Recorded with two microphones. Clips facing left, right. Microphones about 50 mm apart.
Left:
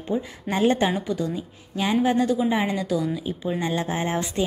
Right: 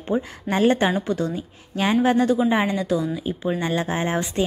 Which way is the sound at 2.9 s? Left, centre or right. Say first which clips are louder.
Right 2 dB; centre.